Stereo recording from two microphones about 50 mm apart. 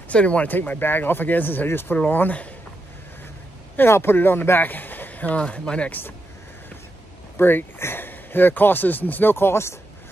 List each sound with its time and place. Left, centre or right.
0.1 s speech: left
0.5 s speech: left
3.9 s speech: left
5.4 s speech: left
7.3 s speech: left